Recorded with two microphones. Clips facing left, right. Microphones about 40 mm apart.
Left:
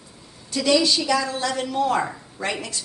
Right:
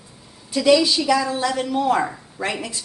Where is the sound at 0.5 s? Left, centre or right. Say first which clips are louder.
Right 3 dB; centre.